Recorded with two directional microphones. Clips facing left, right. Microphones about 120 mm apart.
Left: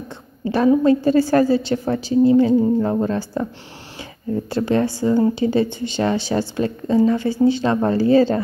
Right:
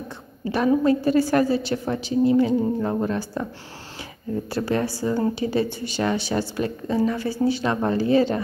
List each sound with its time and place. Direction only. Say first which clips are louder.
0.5 s speech: left 4 dB; 30° left (ahead or behind)
4.5 s speech: left 5 dB; 25° left (ahead or behind)